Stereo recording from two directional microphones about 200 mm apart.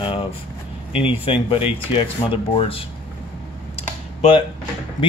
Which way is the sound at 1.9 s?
25° left (ahead or behind).